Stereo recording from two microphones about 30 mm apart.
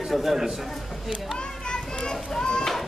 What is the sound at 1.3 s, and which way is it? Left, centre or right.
Children playing, left.